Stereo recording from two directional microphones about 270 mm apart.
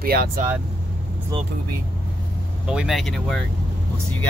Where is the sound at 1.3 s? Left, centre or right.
Centre.